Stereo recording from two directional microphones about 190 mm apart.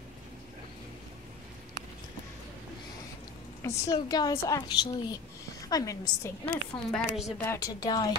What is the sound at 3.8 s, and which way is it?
Speech, 20° left (ahead or behind).